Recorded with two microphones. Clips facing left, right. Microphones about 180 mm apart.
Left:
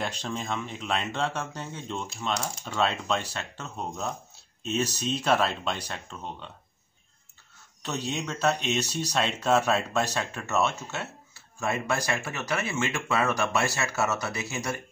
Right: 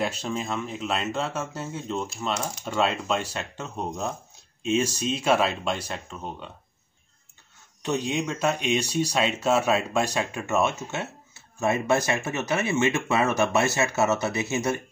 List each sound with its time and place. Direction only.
0.0 s speech: 5° right (ahead or behind)
7.8 s speech: 15° right (ahead or behind)